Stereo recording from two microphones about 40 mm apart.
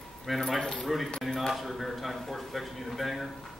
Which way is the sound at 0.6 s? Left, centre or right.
Centre.